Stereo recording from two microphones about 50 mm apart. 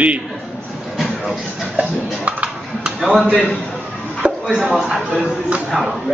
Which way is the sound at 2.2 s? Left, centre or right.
Right.